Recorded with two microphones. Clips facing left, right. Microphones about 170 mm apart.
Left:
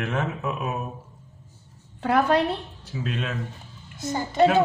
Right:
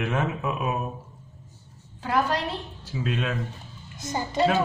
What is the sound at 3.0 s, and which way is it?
Speech, centre (ahead or behind).